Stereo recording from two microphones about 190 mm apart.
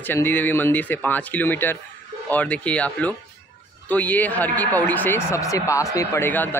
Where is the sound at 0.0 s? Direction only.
10° left (ahead or behind).